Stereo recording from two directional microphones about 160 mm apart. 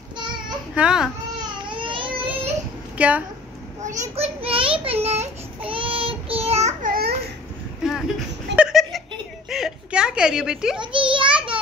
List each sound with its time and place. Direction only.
0.7 s speech: 5° right (ahead or behind)
1.4 s baby cry: 30° right (ahead or behind)
3.0 s a woman's voice: 10° right (ahead or behind)
3.8 s a child's voice: 40° right (ahead or behind)
4.8 s child singing: 40° right (ahead or behind)
6.9 s babbling: 70° right (ahead or behind)
8.5 s a sound: 5° right (ahead or behind)
10.8 s a sound: 30° right (ahead or behind)